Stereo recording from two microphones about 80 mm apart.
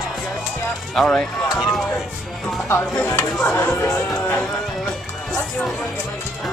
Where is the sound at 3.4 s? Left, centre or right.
Left.